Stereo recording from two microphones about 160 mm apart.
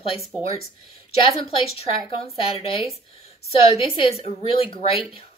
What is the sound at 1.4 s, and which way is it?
Speech, 40° left (ahead or behind).